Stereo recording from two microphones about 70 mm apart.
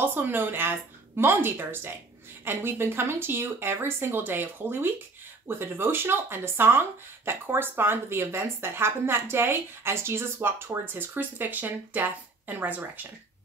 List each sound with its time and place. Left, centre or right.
0.0 s a woman's voice: right